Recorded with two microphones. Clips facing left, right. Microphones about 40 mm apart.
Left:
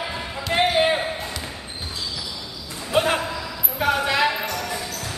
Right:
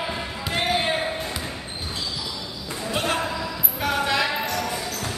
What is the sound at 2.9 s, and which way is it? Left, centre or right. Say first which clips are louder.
Basketball bounce: left 5 dB; centre.